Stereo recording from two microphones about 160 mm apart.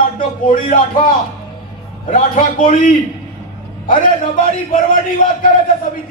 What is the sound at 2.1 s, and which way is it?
Speech, 55° left (ahead or behind).